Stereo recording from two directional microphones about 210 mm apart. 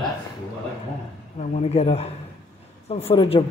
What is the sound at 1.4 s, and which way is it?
A man's voice, 30° left (ahead or behind).